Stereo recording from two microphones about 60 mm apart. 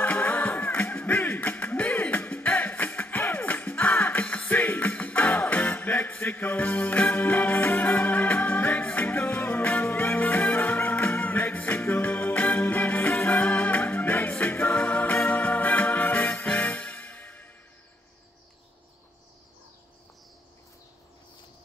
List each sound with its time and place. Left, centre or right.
0.0 s music: left
5.9 s music: left